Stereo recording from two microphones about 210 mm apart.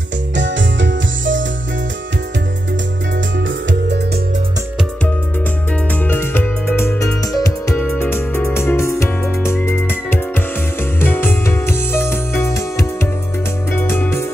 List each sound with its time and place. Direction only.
0.4 s music: 60° right (ahead or behind)
3.3 s music: 60° right (ahead or behind)
6.0 s music: 10° left (ahead or behind)